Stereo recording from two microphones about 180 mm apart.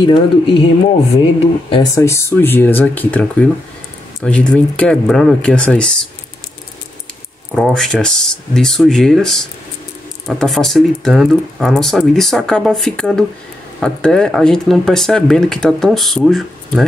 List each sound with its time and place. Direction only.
0.0 s speech: 30° left (ahead or behind)
1.7 s speech: 20° left (ahead or behind)
7.5 s speech: centre (ahead or behind)